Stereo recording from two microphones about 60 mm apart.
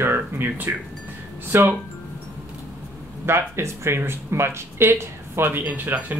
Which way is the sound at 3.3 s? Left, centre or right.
Right.